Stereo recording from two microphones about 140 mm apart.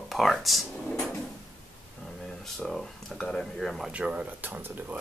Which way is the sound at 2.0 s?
Centre (ahead or behind).